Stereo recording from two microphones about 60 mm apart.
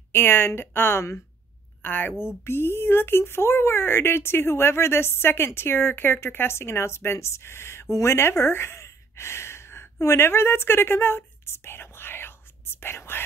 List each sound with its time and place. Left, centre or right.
0.1 s a woman's voice: left